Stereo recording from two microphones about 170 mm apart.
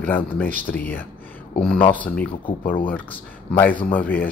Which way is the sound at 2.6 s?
55° left (ahead or behind).